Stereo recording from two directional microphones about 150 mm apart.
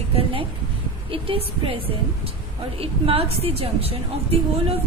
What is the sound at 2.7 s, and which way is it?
A woman's voice, 40° right (ahead or behind).